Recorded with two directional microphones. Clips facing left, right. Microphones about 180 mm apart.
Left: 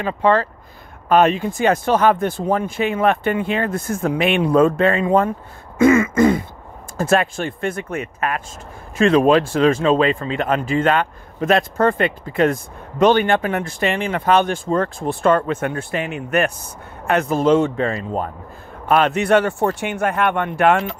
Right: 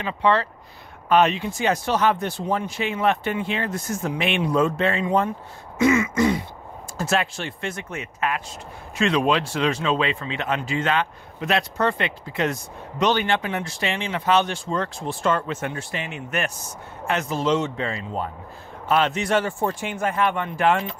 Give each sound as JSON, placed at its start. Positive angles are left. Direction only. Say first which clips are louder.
{"t": 0.0, "sound": "speech", "louder": "left 4 dB", "side_deg": 45}
{"t": 5.8, "sound": "throat clearing", "louder": "left 6 dB", "side_deg": 50}
{"t": 7.0, "sound": "speech", "louder": "left 6 dB", "side_deg": 50}